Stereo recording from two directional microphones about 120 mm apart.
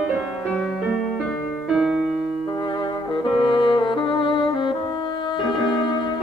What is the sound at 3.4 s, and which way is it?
Music, 40° left (ahead or behind).